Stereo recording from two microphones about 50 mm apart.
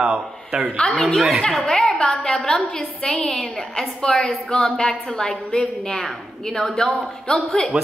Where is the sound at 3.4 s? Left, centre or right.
Centre.